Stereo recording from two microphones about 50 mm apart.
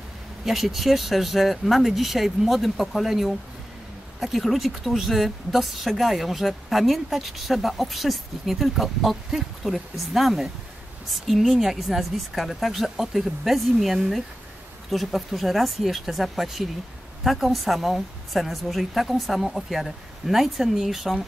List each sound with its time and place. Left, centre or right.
0.5 s a woman's voice: centre